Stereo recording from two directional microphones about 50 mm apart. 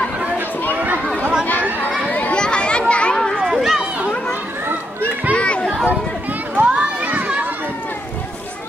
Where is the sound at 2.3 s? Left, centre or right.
Centre.